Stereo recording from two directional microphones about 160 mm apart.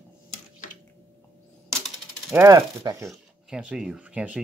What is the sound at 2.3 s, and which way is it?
Speech, 20° right (ahead or behind).